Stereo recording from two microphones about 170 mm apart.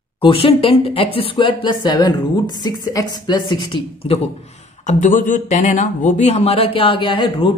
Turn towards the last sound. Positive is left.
turn(degrees=30)  # may be behind; listen again after turning